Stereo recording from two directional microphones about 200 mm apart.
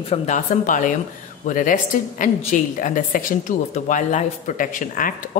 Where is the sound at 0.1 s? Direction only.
35° left (ahead or behind).